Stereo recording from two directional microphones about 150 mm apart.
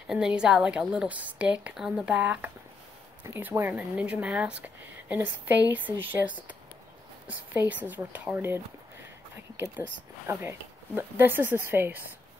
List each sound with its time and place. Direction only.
0.0 s a woman's voice: 5° right (ahead or behind)